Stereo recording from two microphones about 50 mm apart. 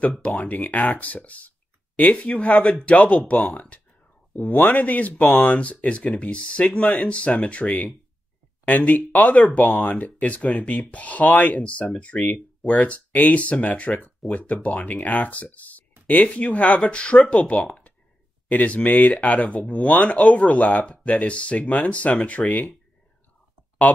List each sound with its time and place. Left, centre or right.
0.2 s speech: left